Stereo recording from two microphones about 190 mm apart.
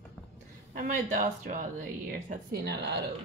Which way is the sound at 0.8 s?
40° right (ahead or behind).